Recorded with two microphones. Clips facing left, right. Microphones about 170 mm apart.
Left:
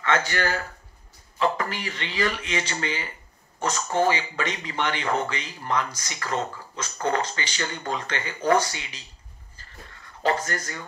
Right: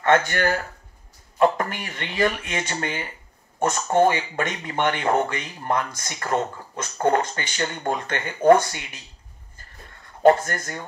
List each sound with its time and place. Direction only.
0.0 s speech: 50° right (ahead or behind)
10.2 s speech: 50° right (ahead or behind)